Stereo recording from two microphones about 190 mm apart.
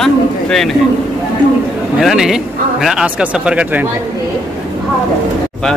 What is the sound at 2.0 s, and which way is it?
Speech, centre (ahead or behind).